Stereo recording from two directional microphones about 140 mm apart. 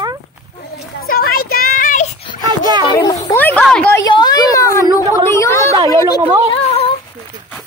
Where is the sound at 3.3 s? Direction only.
15° left (ahead or behind).